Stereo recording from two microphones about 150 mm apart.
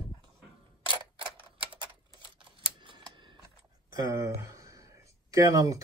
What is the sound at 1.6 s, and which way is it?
Typewriter, 35° right (ahead or behind).